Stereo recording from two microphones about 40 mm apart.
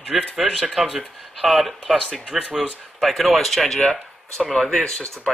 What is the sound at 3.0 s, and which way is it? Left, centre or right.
Speech, centre.